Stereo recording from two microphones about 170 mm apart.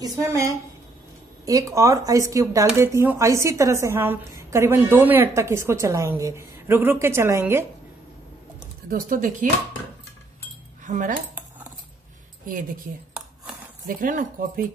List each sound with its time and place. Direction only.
0.0 s a woman's voice: 20° right (ahead or behind)
8.9 s speech: 50° right (ahead or behind)
10.8 s cutlery: 50° right (ahead or behind)
13.8 s speech: 55° right (ahead or behind)